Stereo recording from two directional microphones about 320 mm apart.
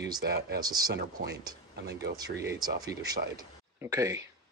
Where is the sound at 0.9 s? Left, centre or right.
Right.